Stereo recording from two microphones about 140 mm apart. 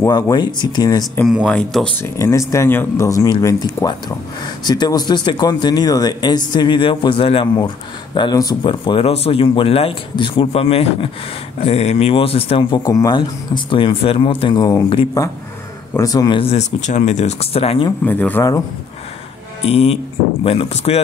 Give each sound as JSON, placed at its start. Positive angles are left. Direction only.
{"t": 0.0, "sound": "speech", "side_deg": 30}
{"t": 1.2, "sound": "speech", "side_deg": -5}
{"t": 2.0, "sound": "speech", "side_deg": 20}
{"t": 12.8, "sound": "speech", "side_deg": 25}
{"t": 13.7, "sound": "speech", "side_deg": 35}
{"t": 16.3, "sound": "speech", "side_deg": 50}
{"t": 18.0, "sound": "speech", "side_deg": 15}
{"t": 19.6, "sound": "speech", "side_deg": 50}